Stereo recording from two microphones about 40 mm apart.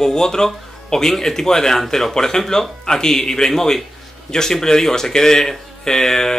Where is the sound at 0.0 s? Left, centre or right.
Centre.